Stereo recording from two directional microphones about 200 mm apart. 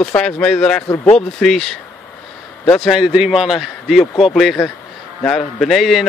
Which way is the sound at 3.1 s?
5° right (ahead or behind).